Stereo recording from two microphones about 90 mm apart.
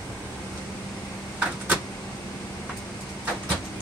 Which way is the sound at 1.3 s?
15° right (ahead or behind).